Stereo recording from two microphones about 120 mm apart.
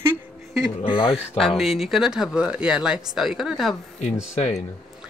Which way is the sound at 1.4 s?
Centre (ahead or behind).